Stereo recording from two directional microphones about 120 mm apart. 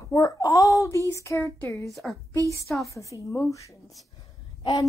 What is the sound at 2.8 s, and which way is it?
A woman's voice, 25° left (ahead or behind).